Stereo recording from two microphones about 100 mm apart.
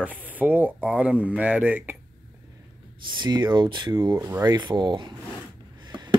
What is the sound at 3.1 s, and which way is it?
Speech, 45° right (ahead or behind).